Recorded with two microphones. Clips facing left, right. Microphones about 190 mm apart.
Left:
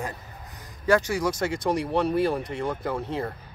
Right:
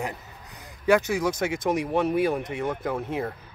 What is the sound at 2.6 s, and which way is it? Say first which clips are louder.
Speech: even; 5° right (ahead or behind).